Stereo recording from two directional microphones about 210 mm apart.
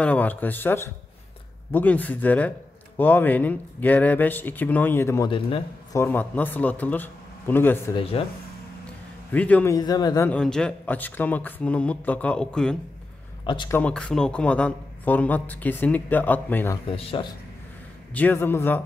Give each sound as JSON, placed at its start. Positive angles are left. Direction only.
{"t": 0.0, "sound": "a man's voice", "side_deg": 5}
{"t": 7.9, "sound": "speech", "side_deg": 25}
{"t": 9.3, "sound": "a man's voice", "side_deg": 5}
{"t": 13.4, "sound": "speech", "side_deg": 20}
{"t": 13.7, "sound": "a man's voice", "side_deg": 5}
{"t": 16.9, "sound": "speech", "side_deg": 25}
{"t": 18.1, "sound": "a man's voice", "side_deg": 10}